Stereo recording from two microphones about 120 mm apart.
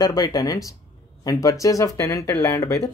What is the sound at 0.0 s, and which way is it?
Speech, 30° left (ahead or behind).